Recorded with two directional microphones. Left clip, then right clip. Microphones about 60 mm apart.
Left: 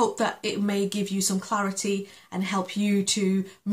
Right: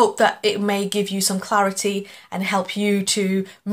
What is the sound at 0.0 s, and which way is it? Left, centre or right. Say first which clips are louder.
Speech: right 8 dB; left.